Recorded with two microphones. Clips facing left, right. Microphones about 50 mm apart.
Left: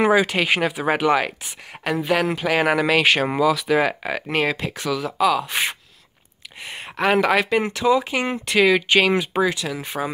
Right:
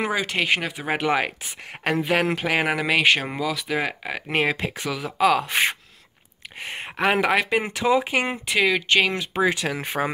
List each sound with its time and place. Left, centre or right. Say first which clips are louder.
0.0 s speech: left 6 dB; centre
1.0 s speech: left 3 dB; centre
1.4 s speech: right 1 dB; right
2.4 s speech: left 4 dB; centre
4.3 s speech: even; right
5.2 s speech: even; right
5.5 s speech: right 2 dB; right
6.6 s a sound: right 2 dB; right
7.0 s speech: left 2 dB; centre
7.7 s speech: even; right
8.5 s speech: left 6 dB; centre
9.1 s speech: left 7 dB; centre
9.4 s speech: left 1 dB; right